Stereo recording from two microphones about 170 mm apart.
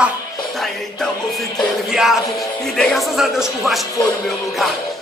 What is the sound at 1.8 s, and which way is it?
A man's voice, 5° right (ahead or behind).